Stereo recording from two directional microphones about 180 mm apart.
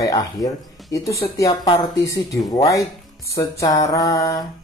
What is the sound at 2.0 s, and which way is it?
Speech, 20° left (ahead or behind).